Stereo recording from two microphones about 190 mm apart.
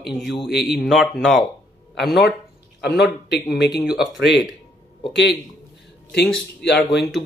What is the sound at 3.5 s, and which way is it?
Speech, 60° left (ahead or behind).